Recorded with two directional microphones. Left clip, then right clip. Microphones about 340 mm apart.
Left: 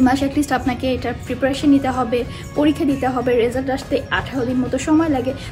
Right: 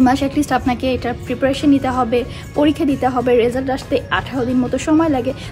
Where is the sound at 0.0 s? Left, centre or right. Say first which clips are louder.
Right 2 dB; centre.